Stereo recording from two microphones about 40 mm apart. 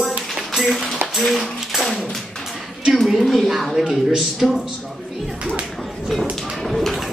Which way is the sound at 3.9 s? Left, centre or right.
Centre.